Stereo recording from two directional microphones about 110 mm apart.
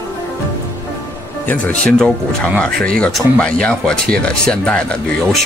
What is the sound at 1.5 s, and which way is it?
Speech, 10° left (ahead or behind).